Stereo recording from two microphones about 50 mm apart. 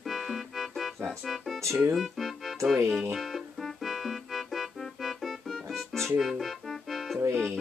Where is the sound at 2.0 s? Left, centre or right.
Centre.